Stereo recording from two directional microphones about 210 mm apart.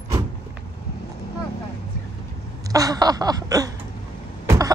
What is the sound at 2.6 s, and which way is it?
Speech, 15° right (ahead or behind).